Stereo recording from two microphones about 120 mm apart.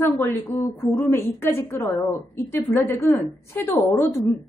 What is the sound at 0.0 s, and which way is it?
A woman's voice, 20° left (ahead or behind).